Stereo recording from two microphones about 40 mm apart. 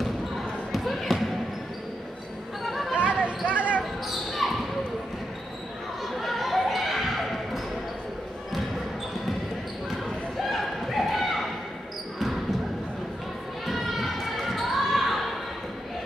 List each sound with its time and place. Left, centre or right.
0.7 s basketball bounce: centre
2.6 s a sound: centre
2.9 s basketball bounce: right
4.1 s basketball bounce: centre
6.2 s basketball bounce: centre
10.5 s a sound: centre
13.7 s basketball bounce: centre